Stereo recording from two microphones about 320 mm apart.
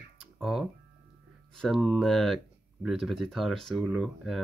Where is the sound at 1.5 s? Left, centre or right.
Centre.